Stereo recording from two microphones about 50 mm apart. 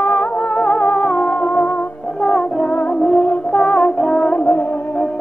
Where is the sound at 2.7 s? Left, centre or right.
Left.